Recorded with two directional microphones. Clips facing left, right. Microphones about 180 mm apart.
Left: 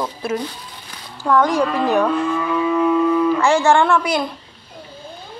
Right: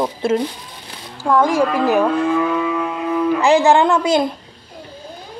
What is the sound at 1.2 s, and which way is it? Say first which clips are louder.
Speech: right 1 dB; 10° right (ahead or behind).